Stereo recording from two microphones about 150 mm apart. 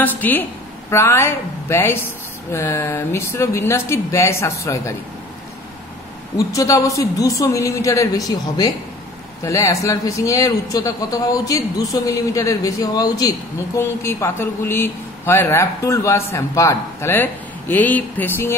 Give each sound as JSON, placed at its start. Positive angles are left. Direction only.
{"t": 0.0, "sound": "a woman's voice", "side_deg": 10}
{"t": 6.3, "sound": "a man's voice", "side_deg": 20}